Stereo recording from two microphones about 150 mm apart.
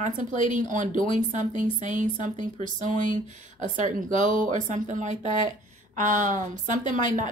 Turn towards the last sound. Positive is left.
turn(degrees=-55)  # may be behind; listen again after turning